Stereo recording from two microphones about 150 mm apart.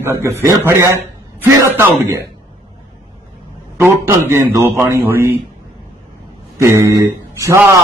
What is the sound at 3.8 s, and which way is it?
A man's voice, 15° right (ahead or behind).